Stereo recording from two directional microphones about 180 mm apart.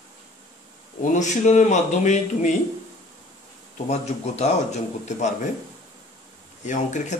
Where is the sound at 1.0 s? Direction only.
40° left (ahead or behind).